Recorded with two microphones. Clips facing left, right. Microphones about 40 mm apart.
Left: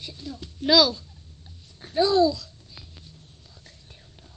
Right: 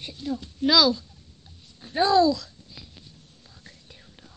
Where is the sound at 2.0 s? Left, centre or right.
Right.